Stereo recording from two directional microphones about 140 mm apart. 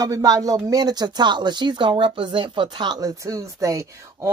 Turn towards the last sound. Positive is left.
turn(degrees=-25)  # may be behind; listen again after turning